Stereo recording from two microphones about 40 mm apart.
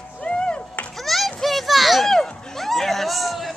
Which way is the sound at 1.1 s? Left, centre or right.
Centre.